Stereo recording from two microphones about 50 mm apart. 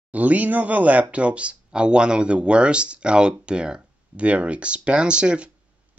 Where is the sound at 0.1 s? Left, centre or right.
Right.